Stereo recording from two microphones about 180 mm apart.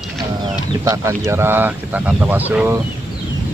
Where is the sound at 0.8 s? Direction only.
15° right (ahead or behind).